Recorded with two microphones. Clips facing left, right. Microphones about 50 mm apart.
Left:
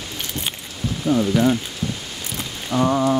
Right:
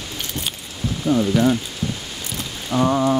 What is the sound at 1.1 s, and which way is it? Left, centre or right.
Speech, centre.